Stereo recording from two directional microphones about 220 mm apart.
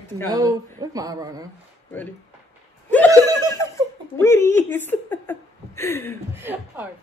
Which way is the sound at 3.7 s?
10° left (ahead or behind).